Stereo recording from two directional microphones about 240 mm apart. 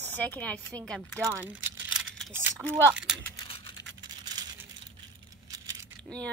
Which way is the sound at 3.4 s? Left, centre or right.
Left.